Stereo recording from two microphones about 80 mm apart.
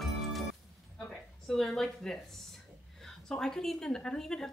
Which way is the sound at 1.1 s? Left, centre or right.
Centre.